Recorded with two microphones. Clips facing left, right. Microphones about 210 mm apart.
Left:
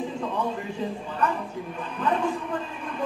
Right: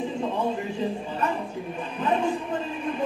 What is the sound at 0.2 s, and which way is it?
A man's voice, 25° right (ahead or behind).